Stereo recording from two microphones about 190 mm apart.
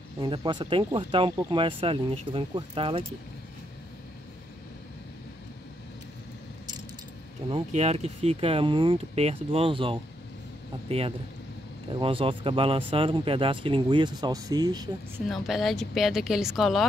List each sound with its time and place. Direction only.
0.2 s speech: 25° right (ahead or behind)
7.4 s a man's voice: 30° right (ahead or behind)
15.2 s speech: centre (ahead or behind)